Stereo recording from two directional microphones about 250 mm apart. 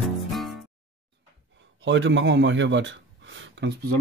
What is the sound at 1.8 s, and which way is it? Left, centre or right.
A man's voice, right.